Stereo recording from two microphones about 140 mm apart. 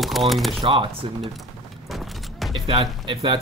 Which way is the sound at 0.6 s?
40° right (ahead or behind).